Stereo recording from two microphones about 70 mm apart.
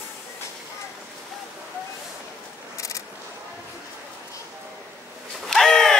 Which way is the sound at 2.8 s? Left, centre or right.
Left.